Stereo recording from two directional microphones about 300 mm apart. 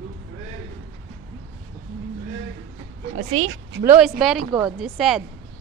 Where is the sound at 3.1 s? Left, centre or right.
Right.